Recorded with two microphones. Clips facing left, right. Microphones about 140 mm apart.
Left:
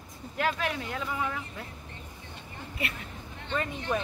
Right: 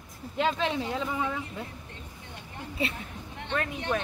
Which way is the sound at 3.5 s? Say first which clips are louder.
Right 1 dB; centre (ahead or behind).